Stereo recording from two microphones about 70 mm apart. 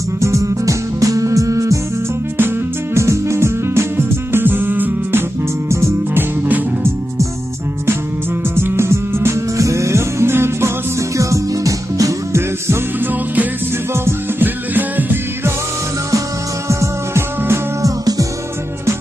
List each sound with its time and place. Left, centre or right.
0.2 s music: right
2.3 s music: right
5.7 s music: right
6.4 s music: right
8.5 s music: right
13.9 s music: right
14.7 s music: right
16.6 s music: right